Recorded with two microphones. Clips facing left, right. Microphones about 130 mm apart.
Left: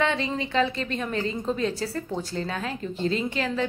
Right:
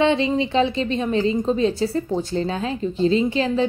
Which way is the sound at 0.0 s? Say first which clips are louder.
Right 7 dB; 25° right (ahead or behind).